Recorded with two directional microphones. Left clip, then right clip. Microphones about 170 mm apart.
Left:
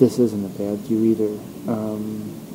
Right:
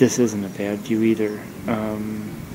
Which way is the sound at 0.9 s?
5° left (ahead or behind).